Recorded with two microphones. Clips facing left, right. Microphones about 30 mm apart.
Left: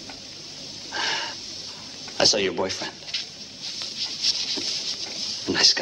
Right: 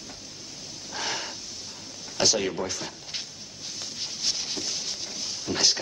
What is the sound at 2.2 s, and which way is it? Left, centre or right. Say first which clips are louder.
Speech: left 4 dB; left.